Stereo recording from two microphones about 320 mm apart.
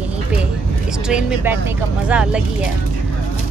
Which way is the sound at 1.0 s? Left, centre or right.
Centre.